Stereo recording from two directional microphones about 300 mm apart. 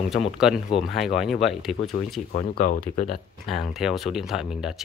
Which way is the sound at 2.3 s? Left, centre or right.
Left.